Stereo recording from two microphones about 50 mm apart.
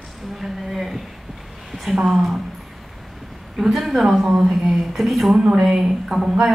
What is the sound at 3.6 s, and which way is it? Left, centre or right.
A woman's voice, centre.